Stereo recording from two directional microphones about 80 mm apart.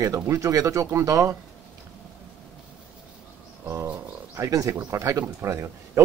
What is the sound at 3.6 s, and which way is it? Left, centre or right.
Pigeon, right.